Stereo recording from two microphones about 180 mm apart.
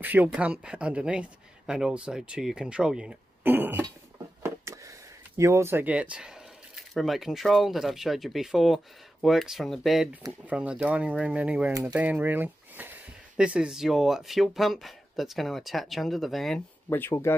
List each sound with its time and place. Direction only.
0.0 s speech: 10° right (ahead or behind)
4.4 s a sound: 15° right (ahead or behind)
5.4 s speech: 15° right (ahead or behind); by 16.6 s centre (ahead or behind)
16.9 s speech: 15° left (ahead or behind)